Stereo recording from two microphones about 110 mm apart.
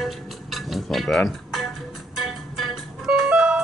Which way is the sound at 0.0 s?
Centre (ahead or behind).